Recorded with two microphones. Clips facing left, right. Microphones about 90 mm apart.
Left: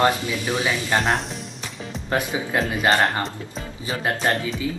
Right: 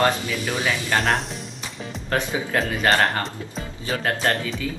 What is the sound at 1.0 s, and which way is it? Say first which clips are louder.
Speech: even; centre (ahead or behind).